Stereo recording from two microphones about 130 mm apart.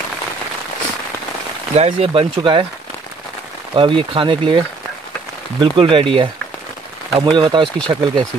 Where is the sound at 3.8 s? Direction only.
40° right (ahead or behind).